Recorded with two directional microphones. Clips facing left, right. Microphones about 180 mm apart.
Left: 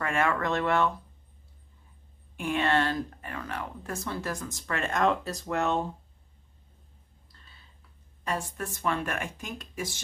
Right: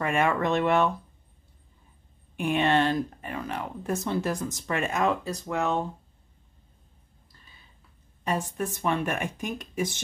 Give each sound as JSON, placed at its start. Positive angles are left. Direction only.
{"t": 0.0, "sound": "speech", "side_deg": -15}
{"t": 2.3, "sound": "speech", "side_deg": -20}
{"t": 8.2, "sound": "speech", "side_deg": -20}